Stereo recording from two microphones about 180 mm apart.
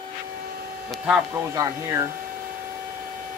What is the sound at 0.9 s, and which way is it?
Speech, 5° right (ahead or behind).